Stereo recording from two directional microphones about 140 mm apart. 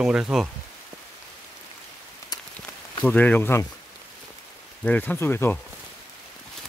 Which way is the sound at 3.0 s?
10° left (ahead or behind).